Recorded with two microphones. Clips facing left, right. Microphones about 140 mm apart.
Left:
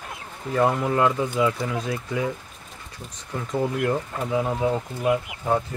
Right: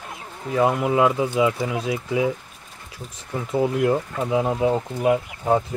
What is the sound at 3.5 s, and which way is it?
Speech, 10° right (ahead or behind).